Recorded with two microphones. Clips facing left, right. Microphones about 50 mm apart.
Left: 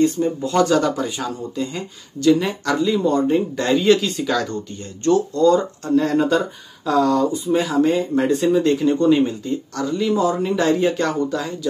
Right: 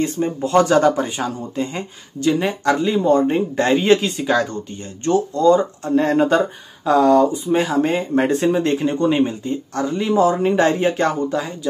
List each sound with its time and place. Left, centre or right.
0.0 s speech: right; by 5.9 s centre
5.9 s speech: right
8.5 s speech: right